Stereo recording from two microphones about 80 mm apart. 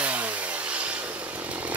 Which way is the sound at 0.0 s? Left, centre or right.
Centre.